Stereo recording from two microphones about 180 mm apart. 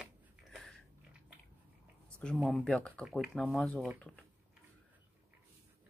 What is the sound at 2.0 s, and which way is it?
Speech, 5° left (ahead or behind).